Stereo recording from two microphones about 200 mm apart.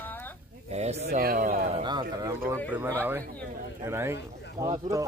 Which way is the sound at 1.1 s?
45° right (ahead or behind).